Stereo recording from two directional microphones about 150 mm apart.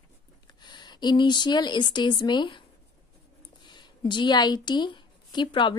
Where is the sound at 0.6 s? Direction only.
30° left (ahead or behind).